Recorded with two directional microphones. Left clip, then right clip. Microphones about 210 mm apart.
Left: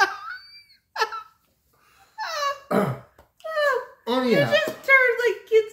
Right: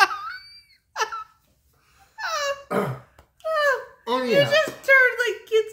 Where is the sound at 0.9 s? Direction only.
20° right (ahead or behind).